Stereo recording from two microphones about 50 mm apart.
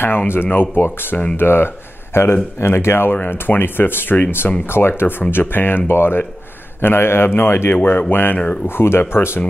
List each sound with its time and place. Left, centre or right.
0.3 s speech: left
3.1 s speech: left